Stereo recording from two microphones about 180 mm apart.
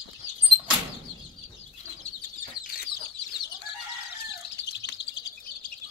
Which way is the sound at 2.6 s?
60° left (ahead or behind).